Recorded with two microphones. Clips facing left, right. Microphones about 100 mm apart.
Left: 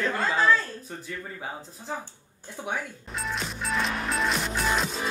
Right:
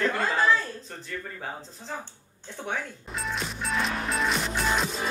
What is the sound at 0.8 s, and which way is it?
Speech, 10° left (ahead or behind).